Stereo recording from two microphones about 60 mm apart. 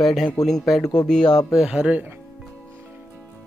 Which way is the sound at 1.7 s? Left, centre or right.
Centre.